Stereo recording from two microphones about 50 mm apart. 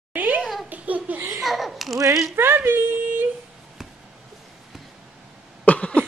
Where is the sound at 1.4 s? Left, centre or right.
Centre.